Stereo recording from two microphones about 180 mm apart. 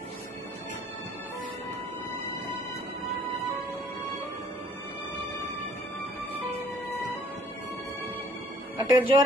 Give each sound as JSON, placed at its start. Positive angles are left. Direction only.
{"t": 8.7, "sound": "speech", "side_deg": -30}